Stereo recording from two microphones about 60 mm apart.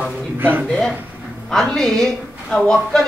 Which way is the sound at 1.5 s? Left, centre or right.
Centre.